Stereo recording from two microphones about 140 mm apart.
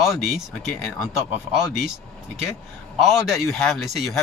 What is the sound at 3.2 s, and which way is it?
Speech, centre (ahead or behind).